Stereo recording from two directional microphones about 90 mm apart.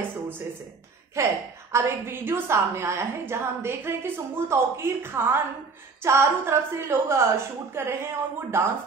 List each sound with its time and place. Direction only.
1.1 s a woman's voice: 35° right (ahead or behind)